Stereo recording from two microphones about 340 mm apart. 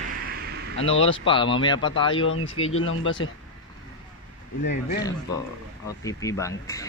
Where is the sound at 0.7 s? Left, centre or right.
Left.